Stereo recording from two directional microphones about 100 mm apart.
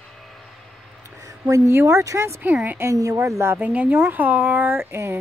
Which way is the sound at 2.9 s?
30° right (ahead or behind).